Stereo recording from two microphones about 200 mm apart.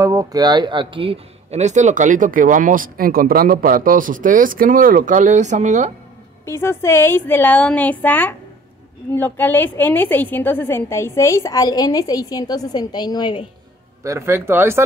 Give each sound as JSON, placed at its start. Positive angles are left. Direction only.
{"t": 0.0, "sound": "speech", "side_deg": -15}
{"t": 6.4, "sound": "a woman's voice", "side_deg": 10}
{"t": 14.0, "sound": "speech", "side_deg": -15}